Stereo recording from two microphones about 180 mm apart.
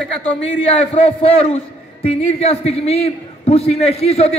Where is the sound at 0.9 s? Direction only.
35° left (ahead or behind).